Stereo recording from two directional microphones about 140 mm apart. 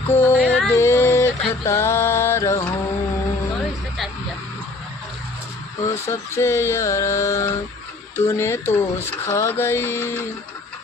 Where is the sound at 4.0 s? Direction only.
Centre (ahead or behind).